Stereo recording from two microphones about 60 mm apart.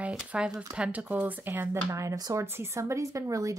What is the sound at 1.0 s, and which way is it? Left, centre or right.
Speech, right.